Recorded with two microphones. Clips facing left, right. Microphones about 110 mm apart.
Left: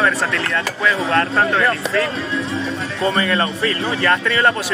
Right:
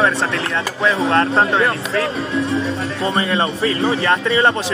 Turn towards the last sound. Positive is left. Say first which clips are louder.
# right 1 dB
turn(degrees=-25)  # may be behind; listen again after turning